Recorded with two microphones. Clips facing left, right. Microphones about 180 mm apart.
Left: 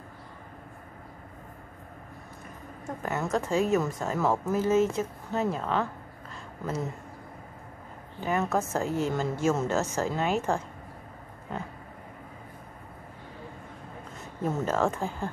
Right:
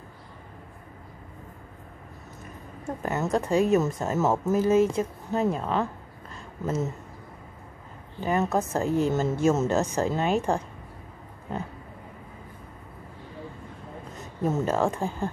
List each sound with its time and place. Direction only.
3.0 s a woman's voice: 20° right (ahead or behind)
8.5 s a woman's voice: 15° right (ahead or behind)
14.4 s a woman's voice: 20° right (ahead or behind)